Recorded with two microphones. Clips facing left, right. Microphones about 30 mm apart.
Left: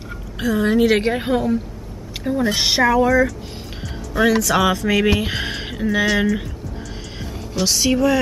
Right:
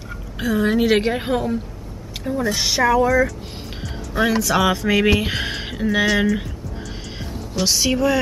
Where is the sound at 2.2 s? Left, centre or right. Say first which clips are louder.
Left 2 dB; centre.